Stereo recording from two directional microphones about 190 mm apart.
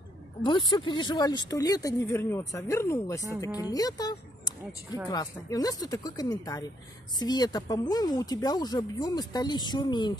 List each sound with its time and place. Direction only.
0.4 s a woman's voice: 25° left (ahead or behind)